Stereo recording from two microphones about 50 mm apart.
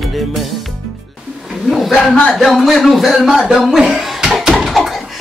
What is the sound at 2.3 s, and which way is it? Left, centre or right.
Music, centre.